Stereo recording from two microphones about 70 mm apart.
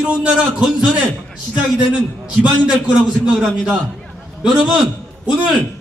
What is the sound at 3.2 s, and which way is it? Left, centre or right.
Speech, centre.